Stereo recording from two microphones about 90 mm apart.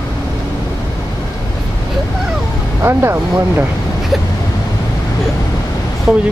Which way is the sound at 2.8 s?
30° right (ahead or behind).